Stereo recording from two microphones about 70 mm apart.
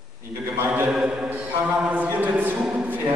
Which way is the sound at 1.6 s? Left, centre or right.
Centre.